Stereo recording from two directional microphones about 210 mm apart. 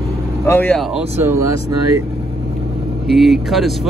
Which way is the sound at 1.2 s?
15° right (ahead or behind).